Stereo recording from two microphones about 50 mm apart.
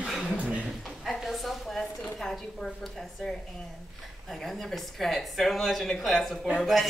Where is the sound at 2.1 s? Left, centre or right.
Centre.